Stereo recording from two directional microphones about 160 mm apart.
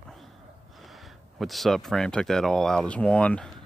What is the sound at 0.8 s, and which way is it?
Speech, centre (ahead or behind).